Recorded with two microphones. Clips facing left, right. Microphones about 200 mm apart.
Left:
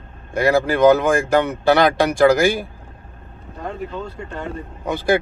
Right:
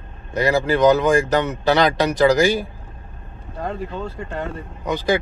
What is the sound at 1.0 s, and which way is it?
Speech, 50° left (ahead or behind).